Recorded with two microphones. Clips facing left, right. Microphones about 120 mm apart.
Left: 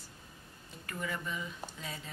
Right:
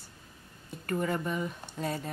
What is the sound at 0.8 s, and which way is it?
Speech, 45° right (ahead or behind).